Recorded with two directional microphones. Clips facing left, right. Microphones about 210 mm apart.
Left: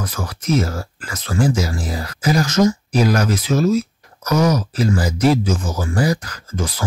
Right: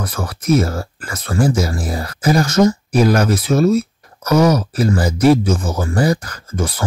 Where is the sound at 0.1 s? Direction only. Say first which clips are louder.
Right 5 dB; 60° right (ahead or behind).